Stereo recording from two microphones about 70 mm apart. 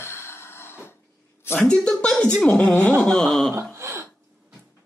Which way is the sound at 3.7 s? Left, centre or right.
Right.